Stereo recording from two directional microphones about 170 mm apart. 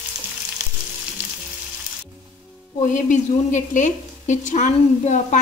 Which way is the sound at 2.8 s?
50° left (ahead or behind).